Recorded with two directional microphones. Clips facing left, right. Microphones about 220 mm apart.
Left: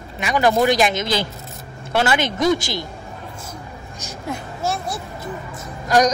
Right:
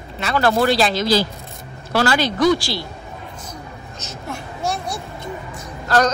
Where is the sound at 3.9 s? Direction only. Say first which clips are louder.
Left 3 dB; 15° left (ahead or behind).